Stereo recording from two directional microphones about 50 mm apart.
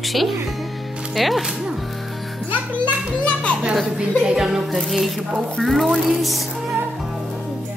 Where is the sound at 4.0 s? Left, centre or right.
Centre.